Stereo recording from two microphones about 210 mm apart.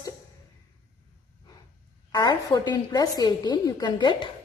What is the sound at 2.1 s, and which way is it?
A woman's voice, 20° left (ahead or behind).